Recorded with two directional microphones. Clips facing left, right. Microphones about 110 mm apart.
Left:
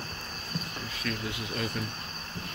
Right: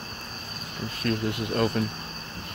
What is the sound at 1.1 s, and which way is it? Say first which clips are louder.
Speech: right 8 dB; 55° right (ahead or behind).